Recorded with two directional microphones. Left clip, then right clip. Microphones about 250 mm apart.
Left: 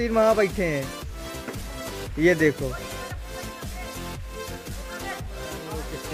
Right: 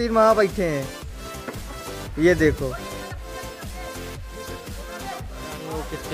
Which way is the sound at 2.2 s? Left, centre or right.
Centre.